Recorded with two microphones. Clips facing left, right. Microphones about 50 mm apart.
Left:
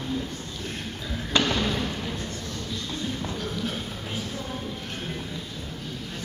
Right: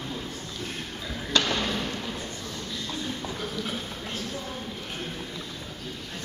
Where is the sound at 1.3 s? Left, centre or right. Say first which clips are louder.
Left 2 dB; centre.